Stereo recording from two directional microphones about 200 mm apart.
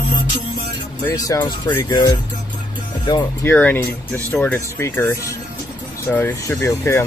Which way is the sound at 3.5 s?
10° left (ahead or behind).